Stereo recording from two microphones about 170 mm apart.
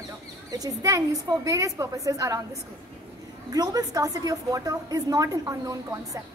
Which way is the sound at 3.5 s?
20° right (ahead or behind).